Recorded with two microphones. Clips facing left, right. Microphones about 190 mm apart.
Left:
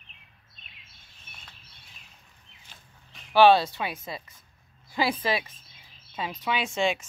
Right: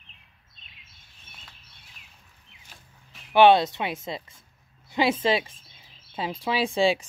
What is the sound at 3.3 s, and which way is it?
Speech, 20° right (ahead or behind).